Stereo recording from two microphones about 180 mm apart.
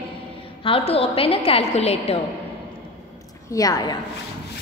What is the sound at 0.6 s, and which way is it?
A woman's voice, 30° left (ahead or behind).